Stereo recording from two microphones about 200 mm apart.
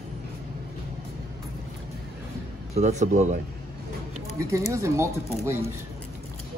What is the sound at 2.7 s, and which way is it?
Speech, 35° right (ahead or behind).